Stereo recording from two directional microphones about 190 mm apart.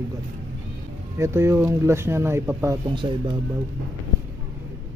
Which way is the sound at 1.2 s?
15° right (ahead or behind).